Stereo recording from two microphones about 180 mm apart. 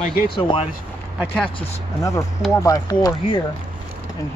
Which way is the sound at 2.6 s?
20° left (ahead or behind).